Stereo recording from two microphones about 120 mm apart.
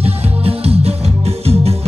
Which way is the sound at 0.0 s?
55° right (ahead or behind).